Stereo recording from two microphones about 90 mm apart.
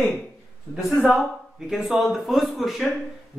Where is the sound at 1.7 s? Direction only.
Centre (ahead or behind).